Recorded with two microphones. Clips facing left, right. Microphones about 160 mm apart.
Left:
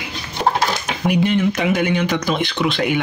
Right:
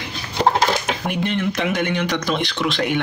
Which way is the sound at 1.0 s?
10° left (ahead or behind).